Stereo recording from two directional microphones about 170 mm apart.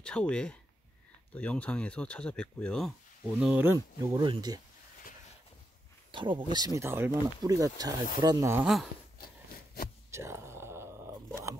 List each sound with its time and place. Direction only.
0.0 s speech: 5° left (ahead or behind)
3.3 s speech: 10° right (ahead or behind)
3.7 s speech: 25° right (ahead or behind)
6.1 s speech: 30° right (ahead or behind)
9.2 s a sound: 65° left (ahead or behind)
10.1 s whispering: 15° right (ahead or behind)